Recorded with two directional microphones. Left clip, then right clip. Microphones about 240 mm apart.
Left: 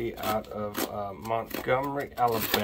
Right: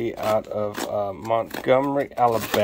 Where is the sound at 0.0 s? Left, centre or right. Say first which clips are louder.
Right 7 dB; right.